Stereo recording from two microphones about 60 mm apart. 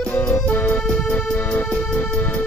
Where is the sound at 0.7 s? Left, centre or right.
Centre.